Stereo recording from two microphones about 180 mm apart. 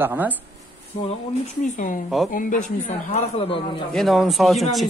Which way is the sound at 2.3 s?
45° left (ahead or behind).